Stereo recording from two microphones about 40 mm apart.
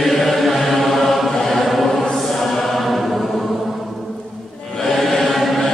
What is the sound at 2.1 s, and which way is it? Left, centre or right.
Choir, centre.